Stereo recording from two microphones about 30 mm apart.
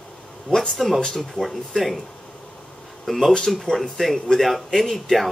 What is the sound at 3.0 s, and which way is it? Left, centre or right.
A man's voice, centre.